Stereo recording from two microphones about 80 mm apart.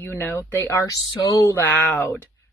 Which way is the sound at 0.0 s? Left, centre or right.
Left.